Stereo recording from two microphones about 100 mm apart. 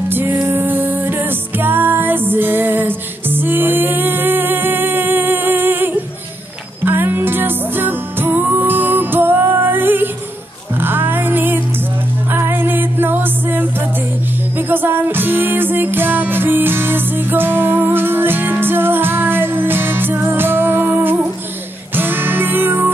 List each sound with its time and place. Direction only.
0.1 s music: 20° right (ahead or behind)
14.7 s music: 20° right (ahead or behind)